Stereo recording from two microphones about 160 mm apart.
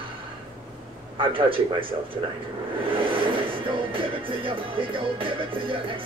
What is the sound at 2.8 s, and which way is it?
Music, 35° right (ahead or behind).